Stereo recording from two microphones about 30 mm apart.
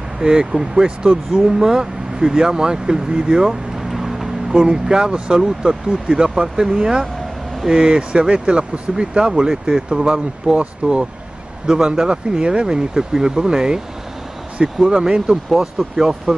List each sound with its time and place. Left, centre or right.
0.2 s speech: right
3.7 s vehicle: centre
4.5 s speech: right
6.8 s speech: right
7.6 s speech: right
8.1 s speech: right
11.6 s speech: right
12.4 s speech: right
12.6 s speech: right
14.9 s speech: right
15.6 s speech: centre